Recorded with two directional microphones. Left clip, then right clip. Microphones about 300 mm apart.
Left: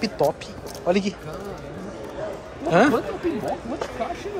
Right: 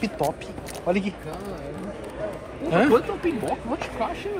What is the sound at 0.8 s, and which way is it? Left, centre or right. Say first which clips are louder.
Speech: left 3 dB; centre.